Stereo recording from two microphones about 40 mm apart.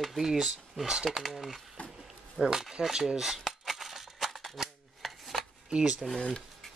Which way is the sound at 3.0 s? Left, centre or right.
Centre.